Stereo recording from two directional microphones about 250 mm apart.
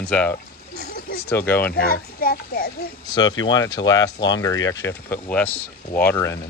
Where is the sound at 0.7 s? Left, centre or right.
Left.